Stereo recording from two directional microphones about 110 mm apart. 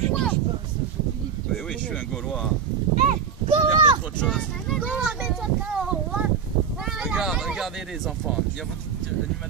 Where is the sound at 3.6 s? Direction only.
45° right (ahead or behind).